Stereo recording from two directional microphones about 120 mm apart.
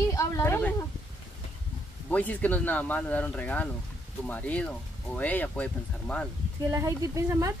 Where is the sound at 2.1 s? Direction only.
10° left (ahead or behind).